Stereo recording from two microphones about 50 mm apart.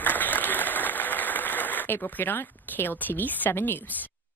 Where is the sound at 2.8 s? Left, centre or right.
Left.